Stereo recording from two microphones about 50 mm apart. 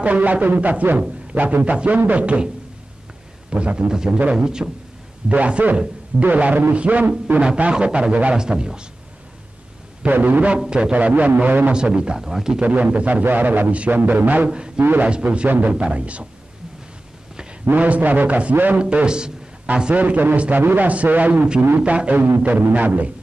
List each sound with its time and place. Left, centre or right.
0.0 s a man's voice: right; by 4.2 s centre
4.2 s a man's voice: right
7.7 s a man's voice: centre
10.1 s a man's voice: right
10.7 s a man's voice: right
11.7 s speech: centre
12.5 s a man's voice: right
15.0 s a man's voice: right
15.4 s a man's voice: right
17.6 s a man's voice: right
18.8 s a man's voice: right